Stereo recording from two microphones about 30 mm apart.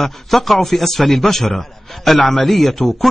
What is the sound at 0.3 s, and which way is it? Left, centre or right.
A man's voice, centre.